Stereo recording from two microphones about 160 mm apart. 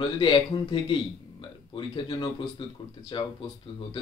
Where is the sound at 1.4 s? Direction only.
30° left (ahead or behind).